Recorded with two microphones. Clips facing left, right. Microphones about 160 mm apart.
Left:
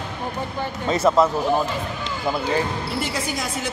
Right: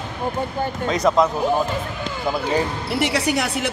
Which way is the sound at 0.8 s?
5° left (ahead or behind).